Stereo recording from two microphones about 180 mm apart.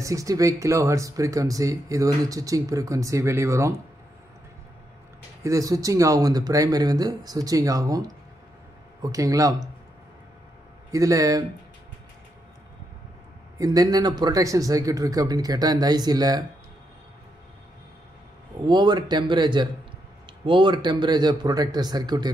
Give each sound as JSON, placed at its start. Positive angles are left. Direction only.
{"t": 0.0, "sound": "speech", "side_deg": -20}
{"t": 5.4, "sound": "speech", "side_deg": -20}
{"t": 10.9, "sound": "speech", "side_deg": -20}
{"t": 13.6, "sound": "speech", "side_deg": -20}
{"t": 18.7, "sound": "speech", "side_deg": -25}